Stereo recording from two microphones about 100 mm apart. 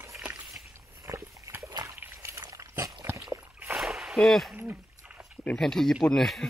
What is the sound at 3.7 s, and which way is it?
Splash, 5° right (ahead or behind).